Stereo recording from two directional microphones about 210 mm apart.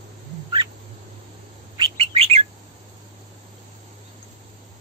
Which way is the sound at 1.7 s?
25° right (ahead or behind).